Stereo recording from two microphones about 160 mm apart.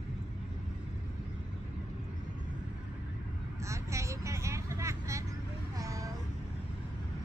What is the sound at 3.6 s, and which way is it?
Vehicle, 20° right (ahead or behind).